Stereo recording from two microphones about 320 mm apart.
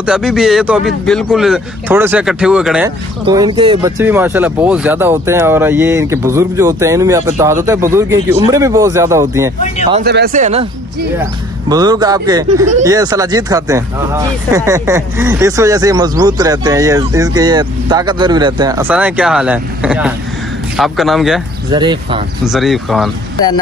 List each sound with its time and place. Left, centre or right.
0.0 s speech: centre
3.3 s speech: centre
10.0 s speech: right
11.7 s speech: centre
21.7 s speech: centre
22.4 s speech: centre